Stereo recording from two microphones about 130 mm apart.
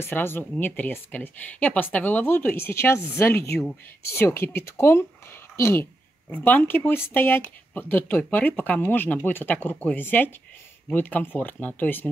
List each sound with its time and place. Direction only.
0.0 s speech: 15° left (ahead or behind)